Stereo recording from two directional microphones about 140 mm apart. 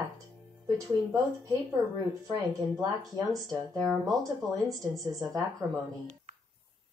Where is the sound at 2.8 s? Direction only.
25° right (ahead or behind).